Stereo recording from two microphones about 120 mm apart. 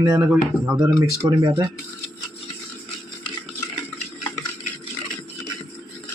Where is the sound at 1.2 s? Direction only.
30° right (ahead or behind).